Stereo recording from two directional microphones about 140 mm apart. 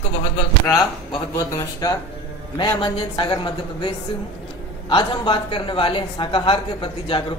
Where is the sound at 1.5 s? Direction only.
25° left (ahead or behind).